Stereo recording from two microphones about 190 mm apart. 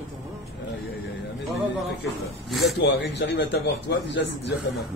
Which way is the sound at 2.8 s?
65° left (ahead or behind).